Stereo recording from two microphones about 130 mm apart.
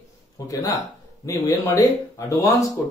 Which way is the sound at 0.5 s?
25° left (ahead or behind).